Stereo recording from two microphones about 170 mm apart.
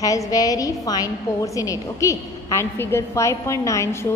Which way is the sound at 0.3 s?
20° left (ahead or behind).